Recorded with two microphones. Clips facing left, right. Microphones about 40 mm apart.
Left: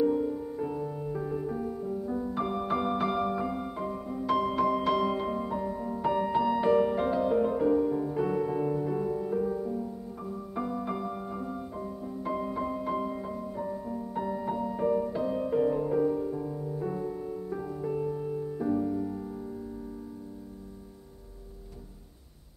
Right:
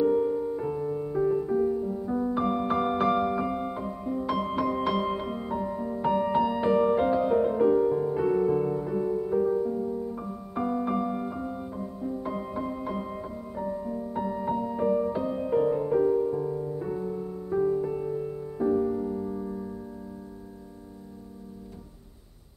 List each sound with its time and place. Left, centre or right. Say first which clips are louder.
0.0 s music: right 3 dB; centre
2.0 s music: right 4 dB; centre
3.8 s music: right 2 dB; centre
8.3 s music: right 4 dB; centre